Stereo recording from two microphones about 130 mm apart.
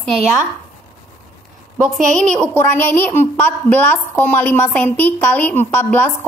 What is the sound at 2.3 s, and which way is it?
A woman's voice, 10° left (ahead or behind).